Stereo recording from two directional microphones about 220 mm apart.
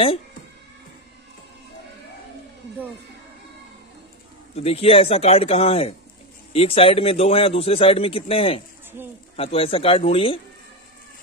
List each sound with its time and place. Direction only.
4.6 s a man's voice: 30° left (ahead or behind)